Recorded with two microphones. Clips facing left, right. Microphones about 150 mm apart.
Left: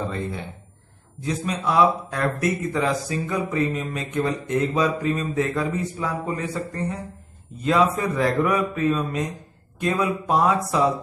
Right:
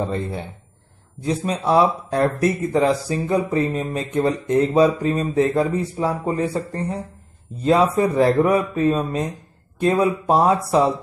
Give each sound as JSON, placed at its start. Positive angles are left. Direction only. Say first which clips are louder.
{"t": 1.2, "sound": "speech", "louder": "right 4 dB", "side_deg": -30}